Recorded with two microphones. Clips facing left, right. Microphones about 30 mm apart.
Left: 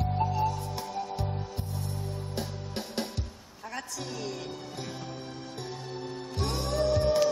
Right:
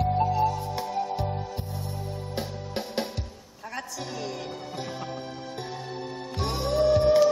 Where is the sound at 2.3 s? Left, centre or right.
Centre.